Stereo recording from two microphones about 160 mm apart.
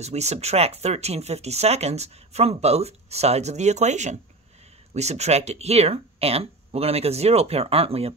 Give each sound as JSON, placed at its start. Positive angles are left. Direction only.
{"t": 0.0, "sound": "speech", "side_deg": -45}